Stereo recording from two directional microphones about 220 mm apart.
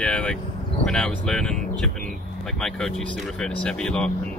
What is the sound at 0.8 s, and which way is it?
Speech, centre (ahead or behind).